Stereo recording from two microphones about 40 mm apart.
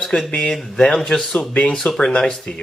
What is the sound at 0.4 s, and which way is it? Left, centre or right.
Speech, left.